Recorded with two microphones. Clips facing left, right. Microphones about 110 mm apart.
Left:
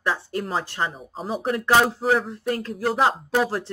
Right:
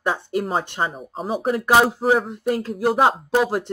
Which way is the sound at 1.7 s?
15° right (ahead or behind).